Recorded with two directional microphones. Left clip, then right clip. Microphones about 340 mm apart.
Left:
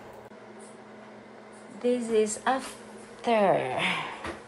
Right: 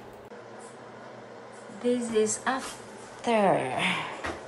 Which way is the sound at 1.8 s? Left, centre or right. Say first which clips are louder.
Left 1 dB; centre.